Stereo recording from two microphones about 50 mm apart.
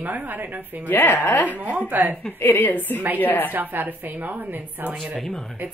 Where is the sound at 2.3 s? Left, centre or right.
Left.